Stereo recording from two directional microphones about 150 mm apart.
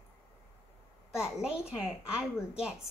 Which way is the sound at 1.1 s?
5° right (ahead or behind).